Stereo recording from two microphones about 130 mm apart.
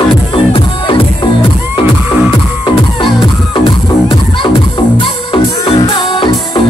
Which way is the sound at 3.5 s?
40° left (ahead or behind).